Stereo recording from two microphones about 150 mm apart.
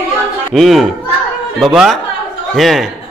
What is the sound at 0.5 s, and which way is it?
Speech, centre (ahead or behind).